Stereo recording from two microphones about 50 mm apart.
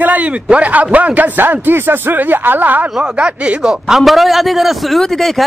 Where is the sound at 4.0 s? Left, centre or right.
Centre.